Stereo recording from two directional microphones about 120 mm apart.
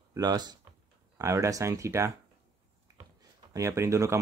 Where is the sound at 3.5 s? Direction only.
25° right (ahead or behind).